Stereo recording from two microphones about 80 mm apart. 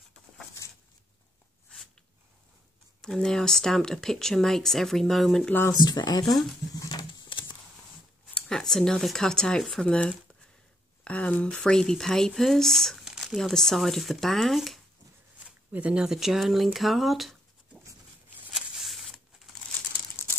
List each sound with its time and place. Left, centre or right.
3.0 s speech: centre
5.7 s speech: left
6.2 s speech: centre
6.9 s a sound: left
8.4 s speech: centre
11.6 s speech: centre
15.4 s speech: centre
18.5 s a sound: centre